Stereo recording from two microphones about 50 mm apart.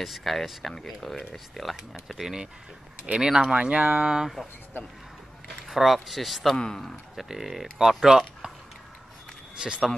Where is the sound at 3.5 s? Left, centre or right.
Right.